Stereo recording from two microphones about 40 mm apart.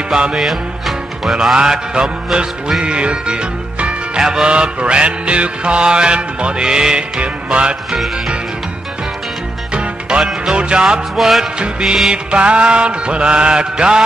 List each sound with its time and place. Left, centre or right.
0.4 s music: centre
1.6 s music: right
9.8 s music: right
11.1 s music: centre
12.1 s music: right